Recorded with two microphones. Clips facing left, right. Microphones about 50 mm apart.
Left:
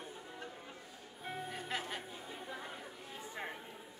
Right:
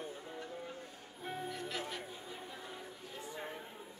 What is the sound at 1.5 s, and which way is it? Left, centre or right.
Music, left.